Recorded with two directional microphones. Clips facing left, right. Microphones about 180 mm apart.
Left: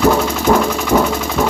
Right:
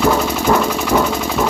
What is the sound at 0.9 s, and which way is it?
Sewing machine, 10° left (ahead or behind).